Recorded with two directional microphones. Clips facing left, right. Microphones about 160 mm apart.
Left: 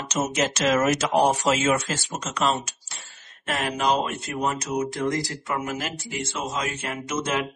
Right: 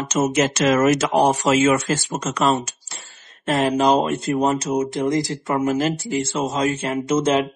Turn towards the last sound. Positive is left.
turn(degrees=-25)  # may be behind; listen again after turning